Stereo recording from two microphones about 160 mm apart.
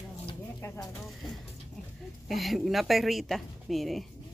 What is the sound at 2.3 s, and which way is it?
A woman's voice, centre (ahead or behind).